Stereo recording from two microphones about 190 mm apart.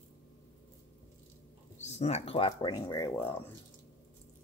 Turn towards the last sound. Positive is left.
turn(degrees=10)  # may be behind; listen again after turning